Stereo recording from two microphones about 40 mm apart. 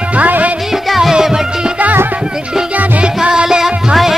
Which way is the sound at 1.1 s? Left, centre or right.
Centre.